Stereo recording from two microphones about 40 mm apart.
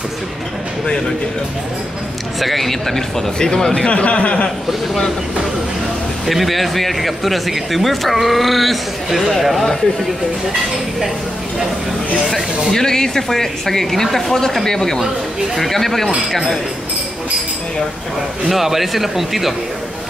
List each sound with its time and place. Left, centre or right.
2.4 s speech: centre
3.8 s speech: left
6.2 s speech: centre
12.3 s speech: centre
18.5 s speech: centre